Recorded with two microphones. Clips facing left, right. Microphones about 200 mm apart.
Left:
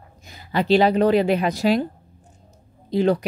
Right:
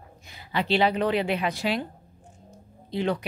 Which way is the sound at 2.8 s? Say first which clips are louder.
Left 8 dB; 40° left (ahead or behind).